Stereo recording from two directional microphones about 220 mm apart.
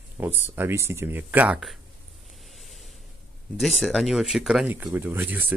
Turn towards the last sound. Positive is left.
turn(degrees=-10)  # may be behind; listen again after turning